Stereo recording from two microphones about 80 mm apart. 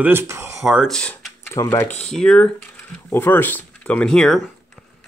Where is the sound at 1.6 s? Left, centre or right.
Left.